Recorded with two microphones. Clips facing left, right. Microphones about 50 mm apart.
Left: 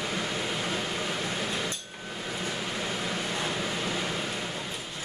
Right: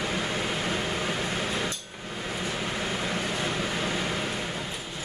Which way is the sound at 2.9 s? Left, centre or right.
Right.